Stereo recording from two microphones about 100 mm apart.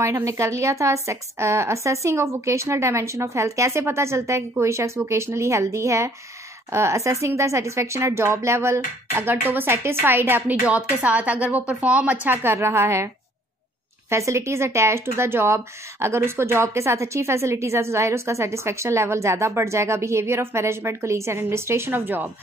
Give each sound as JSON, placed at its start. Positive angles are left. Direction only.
{"t": 0.0, "sound": "speech", "side_deg": -30}
{"t": 14.1, "sound": "speech", "side_deg": -30}